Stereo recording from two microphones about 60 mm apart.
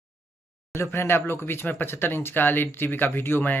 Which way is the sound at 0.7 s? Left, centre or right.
Left.